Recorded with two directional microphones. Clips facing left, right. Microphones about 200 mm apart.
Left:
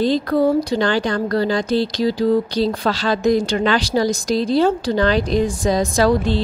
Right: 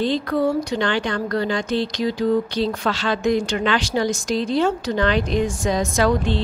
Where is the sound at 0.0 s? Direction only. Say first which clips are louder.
Left 4 dB; 40° left (ahead or behind).